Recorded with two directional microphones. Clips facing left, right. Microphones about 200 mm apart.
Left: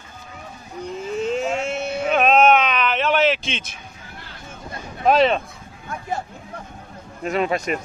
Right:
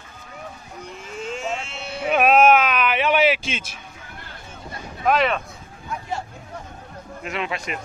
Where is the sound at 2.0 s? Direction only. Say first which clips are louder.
Even; 10° right (ahead or behind).